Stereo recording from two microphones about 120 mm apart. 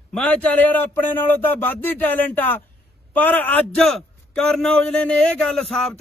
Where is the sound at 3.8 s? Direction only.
5° left (ahead or behind).